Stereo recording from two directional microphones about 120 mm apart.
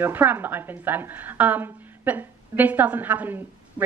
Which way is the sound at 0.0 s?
15° right (ahead or behind).